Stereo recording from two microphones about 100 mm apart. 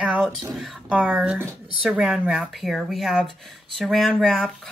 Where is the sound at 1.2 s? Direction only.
10° right (ahead or behind).